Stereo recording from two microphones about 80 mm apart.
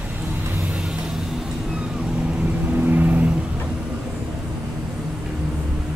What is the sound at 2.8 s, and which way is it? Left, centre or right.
Vehicle, centre.